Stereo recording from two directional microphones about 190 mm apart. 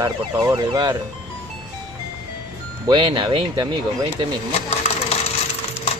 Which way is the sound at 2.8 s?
25° right (ahead or behind).